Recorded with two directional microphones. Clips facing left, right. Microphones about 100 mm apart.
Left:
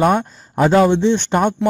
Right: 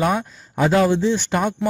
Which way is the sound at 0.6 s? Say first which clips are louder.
Left 4 dB; 30° left (ahead or behind).